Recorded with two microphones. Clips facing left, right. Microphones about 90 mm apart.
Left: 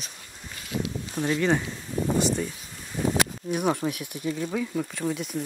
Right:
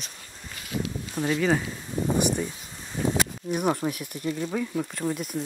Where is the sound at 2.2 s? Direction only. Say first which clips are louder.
Even; 15° right (ahead or behind).